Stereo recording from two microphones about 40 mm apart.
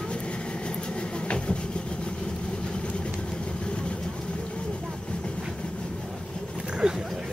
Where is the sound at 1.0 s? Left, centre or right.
Left.